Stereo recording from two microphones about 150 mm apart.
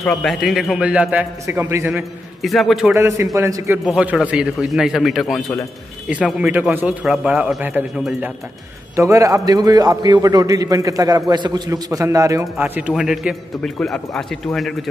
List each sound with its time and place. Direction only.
0.0 s a man's voice: centre (ahead or behind); by 2.0 s 15° right (ahead or behind)
2.4 s a man's voice: centre (ahead or behind)
2.9 s a man's voice: 20° right (ahead or behind)
3.8 s a man's voice: 5° right (ahead or behind)
13.6 s a man's voice: 5° left (ahead or behind)